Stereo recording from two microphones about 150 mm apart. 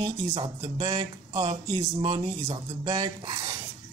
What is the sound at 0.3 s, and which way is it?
Speech, 35° right (ahead or behind).